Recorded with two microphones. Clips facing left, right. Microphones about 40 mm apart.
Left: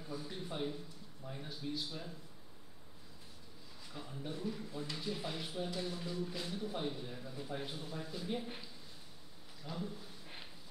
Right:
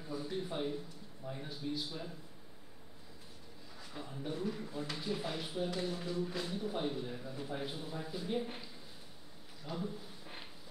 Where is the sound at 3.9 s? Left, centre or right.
Centre.